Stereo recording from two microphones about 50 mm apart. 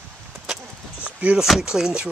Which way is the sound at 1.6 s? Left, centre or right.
Centre.